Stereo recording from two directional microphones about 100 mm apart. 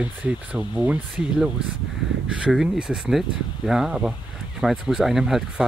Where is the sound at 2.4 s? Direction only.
5° right (ahead or behind).